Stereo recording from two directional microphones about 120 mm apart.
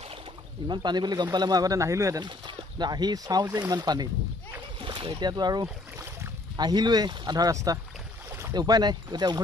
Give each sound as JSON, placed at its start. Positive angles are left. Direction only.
{"t": 0.7, "sound": "speech", "side_deg": -35}
{"t": 2.2, "sound": "speech", "side_deg": -40}
{"t": 8.3, "sound": "boat", "side_deg": -25}
{"t": 8.5, "sound": "speech", "side_deg": -35}